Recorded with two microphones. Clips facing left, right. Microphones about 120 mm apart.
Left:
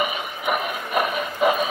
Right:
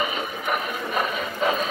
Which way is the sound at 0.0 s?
10° left (ahead or behind).